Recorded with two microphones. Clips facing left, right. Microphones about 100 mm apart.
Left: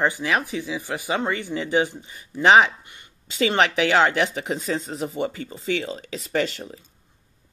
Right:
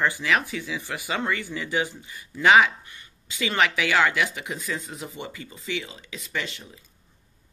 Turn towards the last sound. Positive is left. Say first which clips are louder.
# left 8 dB
turn(degrees=35)  # may be behind; listen again after turning